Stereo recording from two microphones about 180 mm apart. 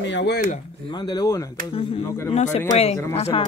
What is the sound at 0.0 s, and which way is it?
Speech, 80° left.